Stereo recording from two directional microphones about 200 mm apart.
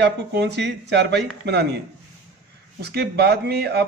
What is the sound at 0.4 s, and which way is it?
A man's voice, 60° right (ahead or behind).